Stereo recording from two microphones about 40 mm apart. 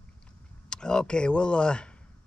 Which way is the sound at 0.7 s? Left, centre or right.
Centre.